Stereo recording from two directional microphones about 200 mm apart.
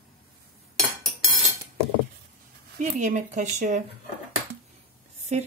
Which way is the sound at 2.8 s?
35° right (ahead or behind).